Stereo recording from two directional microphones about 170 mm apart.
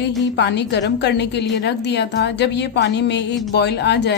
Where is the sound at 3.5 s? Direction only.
80° left.